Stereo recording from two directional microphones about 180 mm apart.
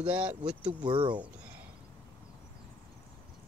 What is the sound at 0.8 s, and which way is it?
Speech, 25° right (ahead or behind).